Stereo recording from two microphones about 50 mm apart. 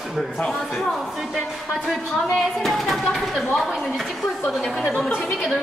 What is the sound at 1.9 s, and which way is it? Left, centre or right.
Speech, centre.